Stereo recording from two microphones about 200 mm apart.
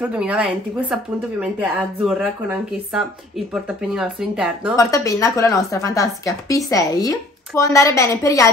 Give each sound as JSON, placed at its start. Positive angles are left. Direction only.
{"t": 0.0, "sound": "speech", "side_deg": -5}
{"t": 4.7, "sound": "a woman's voice", "side_deg": 15}